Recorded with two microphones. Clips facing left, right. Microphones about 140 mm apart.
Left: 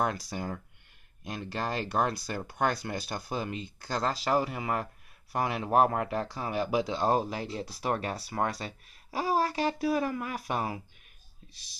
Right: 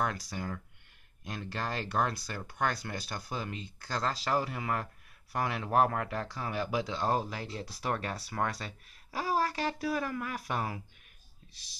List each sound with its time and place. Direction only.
0.0 s speech: 25° left (ahead or behind)